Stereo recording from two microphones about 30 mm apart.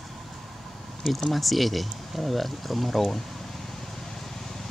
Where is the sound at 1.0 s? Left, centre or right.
Centre.